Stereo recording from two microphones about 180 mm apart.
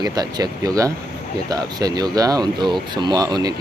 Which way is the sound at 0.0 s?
20° right (ahead or behind).